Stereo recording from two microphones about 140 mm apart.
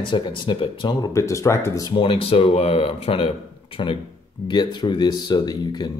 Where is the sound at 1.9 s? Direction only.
40° left (ahead or behind).